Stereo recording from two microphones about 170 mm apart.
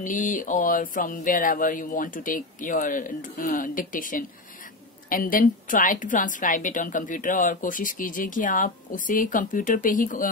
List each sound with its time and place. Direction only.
0.0 s a woman's voice: 50° left (ahead or behind)